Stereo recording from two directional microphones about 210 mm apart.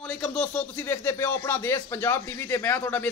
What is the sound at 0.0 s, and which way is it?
Speech, 5° left (ahead or behind).